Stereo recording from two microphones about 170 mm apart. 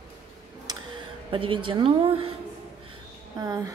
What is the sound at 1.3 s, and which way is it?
A woman's voice, 30° right (ahead or behind).